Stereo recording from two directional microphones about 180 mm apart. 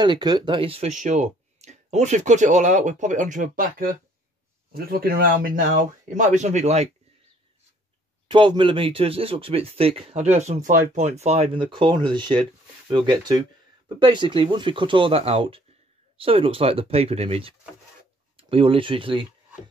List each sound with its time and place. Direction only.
0.0 s speech: 25° right (ahead or behind)
8.3 s speech: 25° right (ahead or behind)